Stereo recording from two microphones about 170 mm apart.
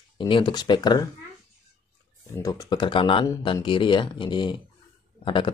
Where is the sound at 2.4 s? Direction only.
25° left (ahead or behind).